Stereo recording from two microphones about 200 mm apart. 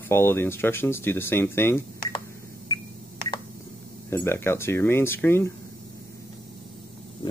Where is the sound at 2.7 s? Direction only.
15° left (ahead or behind).